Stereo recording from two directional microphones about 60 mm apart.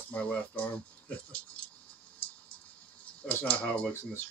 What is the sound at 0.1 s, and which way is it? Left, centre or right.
Speech, left.